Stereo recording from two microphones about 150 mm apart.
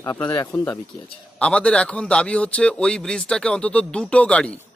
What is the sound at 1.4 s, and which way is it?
A man's voice, 5° left (ahead or behind).